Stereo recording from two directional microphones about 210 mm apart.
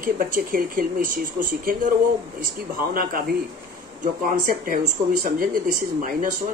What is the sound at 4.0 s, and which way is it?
Speech, 40° right (ahead or behind).